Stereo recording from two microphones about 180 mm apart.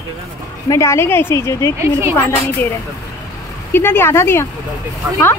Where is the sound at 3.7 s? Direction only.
10° left (ahead or behind).